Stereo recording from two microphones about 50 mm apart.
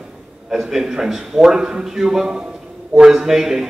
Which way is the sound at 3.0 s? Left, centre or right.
Centre.